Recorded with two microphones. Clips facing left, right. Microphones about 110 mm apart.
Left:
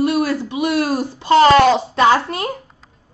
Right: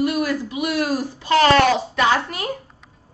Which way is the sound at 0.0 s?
30° left (ahead or behind).